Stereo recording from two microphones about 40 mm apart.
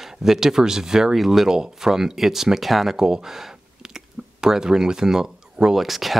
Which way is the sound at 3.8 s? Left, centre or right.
Centre.